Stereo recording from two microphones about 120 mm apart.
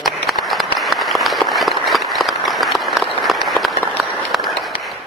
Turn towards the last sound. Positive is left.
turn(degrees=0)  # may be behind; listen again after turning